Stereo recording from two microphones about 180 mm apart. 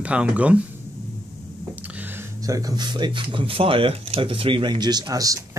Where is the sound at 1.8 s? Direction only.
10° right (ahead or behind).